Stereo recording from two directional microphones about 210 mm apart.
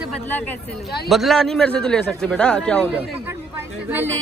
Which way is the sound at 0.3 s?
10° left (ahead or behind).